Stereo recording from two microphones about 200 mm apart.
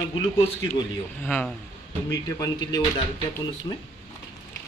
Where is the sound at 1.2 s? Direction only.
10° left (ahead or behind).